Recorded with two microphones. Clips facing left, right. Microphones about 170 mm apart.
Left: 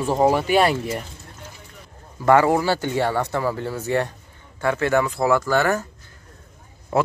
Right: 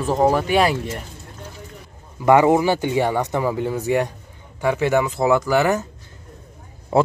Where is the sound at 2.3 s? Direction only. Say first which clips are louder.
Right 2 dB; 15° right (ahead or behind).